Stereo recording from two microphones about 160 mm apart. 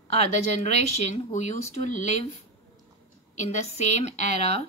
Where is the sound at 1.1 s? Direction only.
50° left (ahead or behind).